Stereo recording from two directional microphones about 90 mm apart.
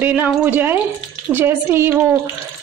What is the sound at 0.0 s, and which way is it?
A woman's voice, 20° right (ahead or behind).